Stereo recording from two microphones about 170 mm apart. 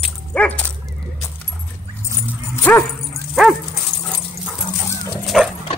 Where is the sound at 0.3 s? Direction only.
5° left (ahead or behind).